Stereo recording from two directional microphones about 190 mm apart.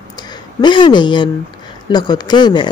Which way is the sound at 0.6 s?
25° left (ahead or behind).